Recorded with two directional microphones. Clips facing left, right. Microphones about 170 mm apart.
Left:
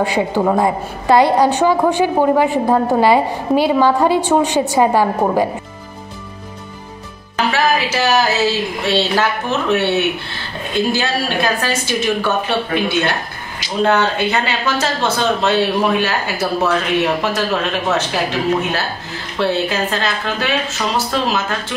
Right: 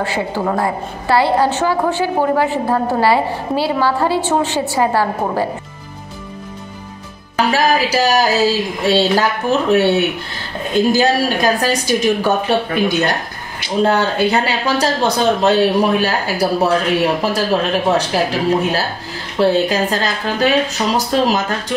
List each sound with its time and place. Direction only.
0.0 s a woman's voice: 15° left (ahead or behind)
7.5 s speech: 40° right (ahead or behind)